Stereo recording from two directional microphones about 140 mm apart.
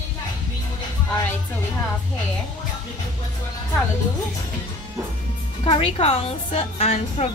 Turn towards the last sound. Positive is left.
turn(degrees=50)  # may be behind; listen again after turning